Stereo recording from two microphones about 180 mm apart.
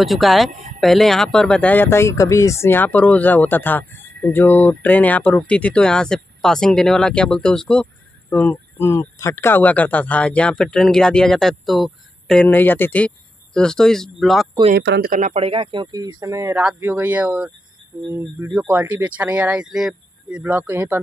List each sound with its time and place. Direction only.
0.0 s speech: centre (ahead or behind)
14.8 s speech: 75° right (ahead or behind)
15.0 s speech: 45° right (ahead or behind)
15.4 s speech: 30° right (ahead or behind); by 21.0 s 10° right (ahead or behind)